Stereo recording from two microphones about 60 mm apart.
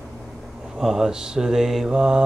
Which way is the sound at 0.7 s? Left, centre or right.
Centre.